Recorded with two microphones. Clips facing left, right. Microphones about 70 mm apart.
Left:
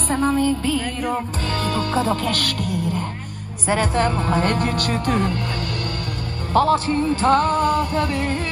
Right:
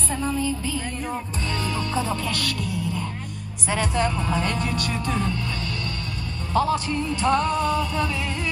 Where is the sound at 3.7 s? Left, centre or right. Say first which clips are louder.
Left 4 dB; left.